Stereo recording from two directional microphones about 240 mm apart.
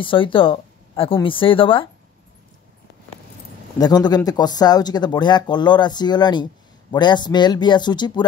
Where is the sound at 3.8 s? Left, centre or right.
Centre.